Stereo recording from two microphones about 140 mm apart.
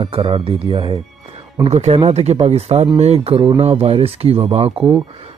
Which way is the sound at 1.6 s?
50° right (ahead or behind).